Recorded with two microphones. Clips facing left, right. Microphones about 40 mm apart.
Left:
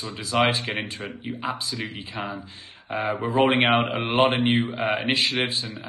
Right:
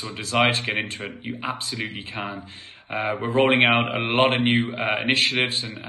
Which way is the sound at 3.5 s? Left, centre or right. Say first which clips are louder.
Right 4 dB; right.